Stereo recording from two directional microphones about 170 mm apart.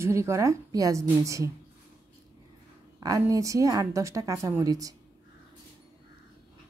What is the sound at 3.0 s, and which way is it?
Speech, 20° right (ahead or behind).